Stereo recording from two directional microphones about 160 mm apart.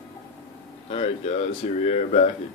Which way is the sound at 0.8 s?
40° left (ahead or behind).